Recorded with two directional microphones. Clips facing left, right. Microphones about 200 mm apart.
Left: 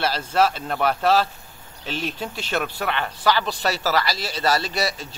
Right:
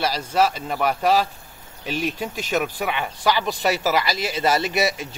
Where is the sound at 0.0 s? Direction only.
10° right (ahead or behind).